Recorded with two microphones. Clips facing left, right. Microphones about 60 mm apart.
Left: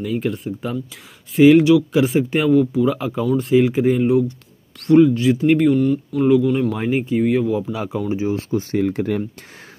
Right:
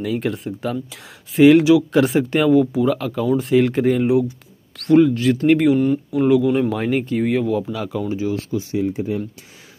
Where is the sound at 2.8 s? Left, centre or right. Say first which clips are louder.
Even; centre.